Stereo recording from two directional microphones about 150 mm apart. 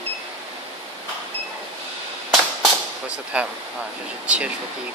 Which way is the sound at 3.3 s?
5° right (ahead or behind).